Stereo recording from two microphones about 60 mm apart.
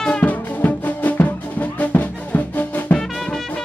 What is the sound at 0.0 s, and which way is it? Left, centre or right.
Music, left.